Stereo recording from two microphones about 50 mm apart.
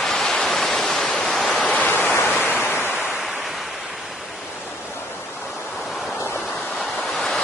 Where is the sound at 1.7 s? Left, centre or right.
Left.